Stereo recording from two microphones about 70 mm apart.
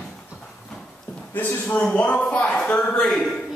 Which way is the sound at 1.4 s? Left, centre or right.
Left.